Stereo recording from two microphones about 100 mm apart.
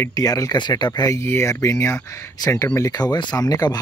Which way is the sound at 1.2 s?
25° left (ahead or behind).